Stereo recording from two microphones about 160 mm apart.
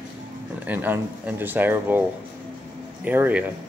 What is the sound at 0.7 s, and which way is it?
Speech, 10° right (ahead or behind).